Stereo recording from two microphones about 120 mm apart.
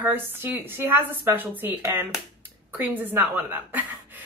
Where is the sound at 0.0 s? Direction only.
15° right (ahead or behind).